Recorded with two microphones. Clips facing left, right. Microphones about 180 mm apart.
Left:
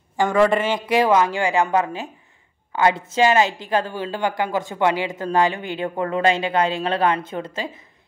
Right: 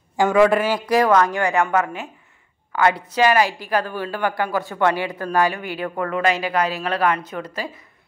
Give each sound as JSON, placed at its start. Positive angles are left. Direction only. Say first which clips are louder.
{"t": 0.2, "sound": "a man's voice", "louder": "right 2 dB", "side_deg": -5}
{"t": 0.8, "sound": "a woman's voice", "louder": "even", "side_deg": 25}